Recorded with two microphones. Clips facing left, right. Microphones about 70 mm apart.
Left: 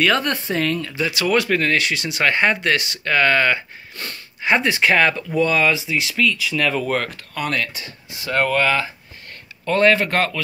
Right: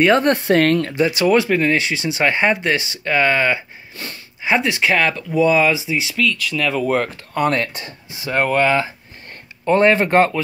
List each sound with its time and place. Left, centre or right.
0.0 s speech: right
0.3 s speech: right
1.0 s speech: right
6.1 s speech: centre
7.3 s speech: right
8.1 s speech: centre